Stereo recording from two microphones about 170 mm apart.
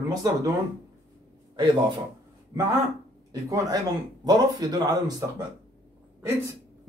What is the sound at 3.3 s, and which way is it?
Speech, 20° right (ahead or behind).